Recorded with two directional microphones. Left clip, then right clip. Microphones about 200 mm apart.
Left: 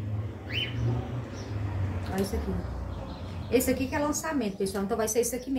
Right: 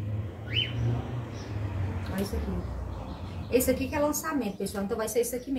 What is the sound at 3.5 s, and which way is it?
A woman's voice, 5° left (ahead or behind).